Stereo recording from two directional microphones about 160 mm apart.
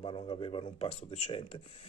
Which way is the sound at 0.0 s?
35° left (ahead or behind).